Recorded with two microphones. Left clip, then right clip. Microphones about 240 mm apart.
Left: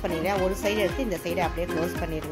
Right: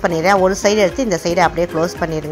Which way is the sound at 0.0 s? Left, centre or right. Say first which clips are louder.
Right 13 dB; centre.